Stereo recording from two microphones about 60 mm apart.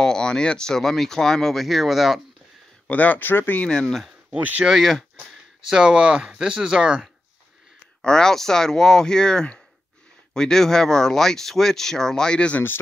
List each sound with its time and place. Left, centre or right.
0.0 s speech: centre
2.9 s speech: left
3.6 s speech: centre
4.3 s speech: right
4.6 s speech: centre
5.7 s speech: centre
8.0 s speech: centre